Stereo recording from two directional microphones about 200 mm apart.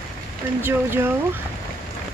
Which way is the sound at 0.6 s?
10° right (ahead or behind).